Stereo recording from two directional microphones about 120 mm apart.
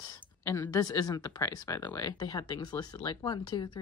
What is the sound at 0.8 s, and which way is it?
Speech, 30° left (ahead or behind).